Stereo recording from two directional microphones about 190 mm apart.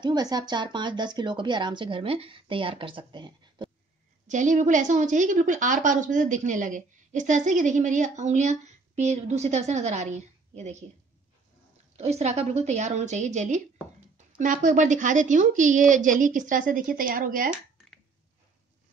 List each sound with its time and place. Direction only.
0.0 s speech: 20° right (ahead or behind)
4.3 s a woman's voice: 40° right (ahead or behind)
12.0 s a woman's voice: 35° right (ahead or behind)